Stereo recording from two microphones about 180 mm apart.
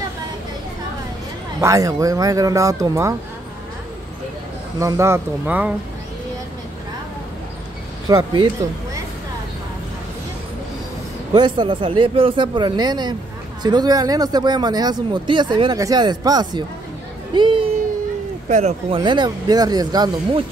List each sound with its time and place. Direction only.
1.6 s speech: 20° right (ahead or behind)
4.7 s speech: 15° right (ahead or behind)
8.1 s speech: 20° right (ahead or behind)
11.3 s speech: 25° right (ahead or behind)
18.5 s speech: 40° right (ahead or behind); by 20.4 s 20° right (ahead or behind)